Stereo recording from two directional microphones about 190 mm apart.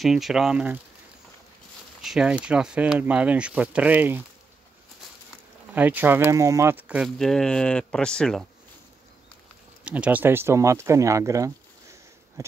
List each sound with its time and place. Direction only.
0.0 s speech: centre (ahead or behind)
2.0 s speech: 5° right (ahead or behind)
5.8 s speech: 10° right (ahead or behind)
9.8 s speech: 5° right (ahead or behind)